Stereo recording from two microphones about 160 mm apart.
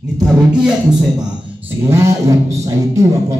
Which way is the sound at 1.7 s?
15° right (ahead or behind).